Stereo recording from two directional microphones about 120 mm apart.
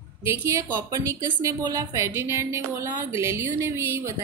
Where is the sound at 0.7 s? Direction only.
30° right (ahead or behind).